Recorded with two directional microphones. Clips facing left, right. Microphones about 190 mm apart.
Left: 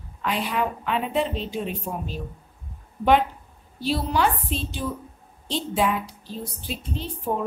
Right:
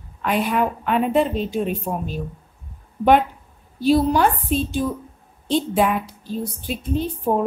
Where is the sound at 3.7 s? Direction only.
45° right (ahead or behind).